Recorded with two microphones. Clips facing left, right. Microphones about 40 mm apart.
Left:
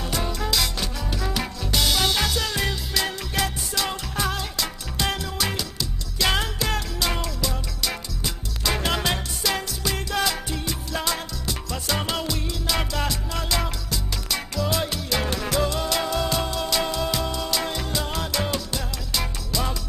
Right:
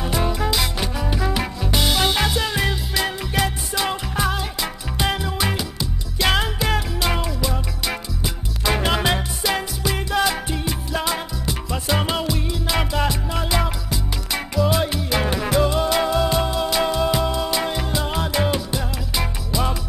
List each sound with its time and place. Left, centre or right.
0.0 s music: centre